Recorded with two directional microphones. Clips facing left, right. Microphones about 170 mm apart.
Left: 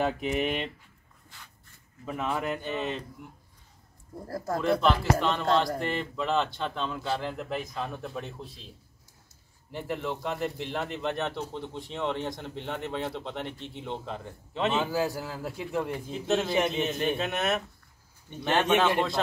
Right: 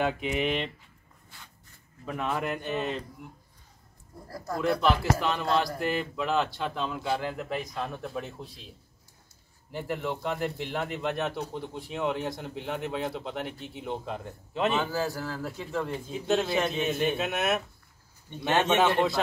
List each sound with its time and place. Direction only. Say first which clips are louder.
0.0 s speech: even; 45° left (ahead or behind)
2.0 s speech: even; centre (ahead or behind)
4.6 s speech: even; centre (ahead or behind)
9.7 s speech: right 1 dB; centre (ahead or behind)
14.8 s a man's voice: left 1 dB; 10° left (ahead or behind)
16.1 s speech: right 2 dB; 5° right (ahead or behind)
19.2 s speech: left 1 dB; 5° right (ahead or behind)